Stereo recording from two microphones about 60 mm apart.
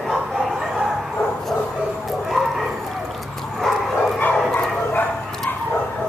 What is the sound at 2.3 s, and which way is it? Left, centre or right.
Bow-wow, centre.